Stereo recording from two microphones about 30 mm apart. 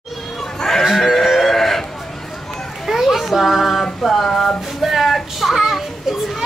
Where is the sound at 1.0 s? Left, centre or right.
Centre.